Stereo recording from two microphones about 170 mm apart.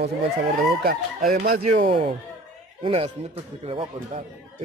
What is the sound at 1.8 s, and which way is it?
Speech, 35° right (ahead or behind).